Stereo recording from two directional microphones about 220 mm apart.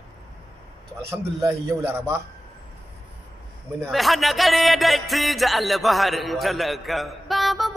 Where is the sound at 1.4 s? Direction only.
10° right (ahead or behind).